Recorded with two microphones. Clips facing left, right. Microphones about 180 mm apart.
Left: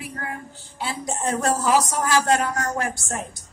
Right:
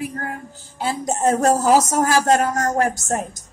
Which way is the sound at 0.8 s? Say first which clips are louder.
Right 7 dB; 45° right (ahead or behind).